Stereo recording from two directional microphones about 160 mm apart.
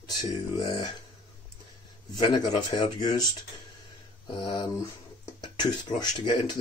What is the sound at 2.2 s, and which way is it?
Speech, 25° left (ahead or behind).